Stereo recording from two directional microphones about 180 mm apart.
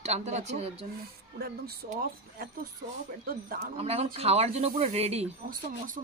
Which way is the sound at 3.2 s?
55° right (ahead or behind).